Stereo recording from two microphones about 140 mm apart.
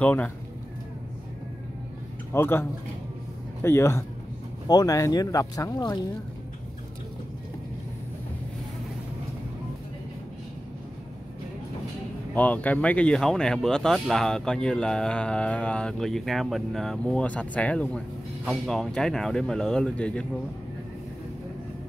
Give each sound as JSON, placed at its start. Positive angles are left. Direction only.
{"t": 0.0, "sound": "a man's voice", "side_deg": 10}
{"t": 2.3, "sound": "a man's voice", "side_deg": 15}
{"t": 12.4, "sound": "speech", "side_deg": 10}